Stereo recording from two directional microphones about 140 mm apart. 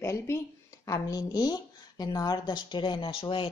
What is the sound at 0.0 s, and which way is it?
A woman's voice, 20° left (ahead or behind).